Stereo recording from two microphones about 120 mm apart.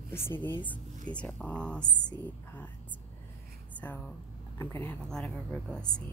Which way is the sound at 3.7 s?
10° left (ahead or behind).